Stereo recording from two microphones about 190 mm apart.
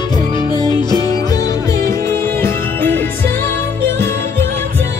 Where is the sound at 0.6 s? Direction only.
20° right (ahead or behind).